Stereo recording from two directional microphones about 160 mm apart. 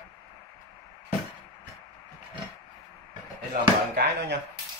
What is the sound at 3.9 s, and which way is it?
Chop, 90° right.